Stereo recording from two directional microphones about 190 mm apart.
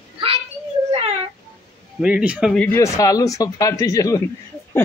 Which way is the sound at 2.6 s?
15° left (ahead or behind).